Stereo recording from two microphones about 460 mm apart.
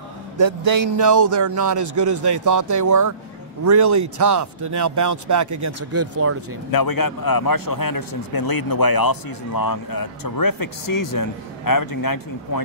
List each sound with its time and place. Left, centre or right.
0.4 s speech: right
6.7 s a man's voice: left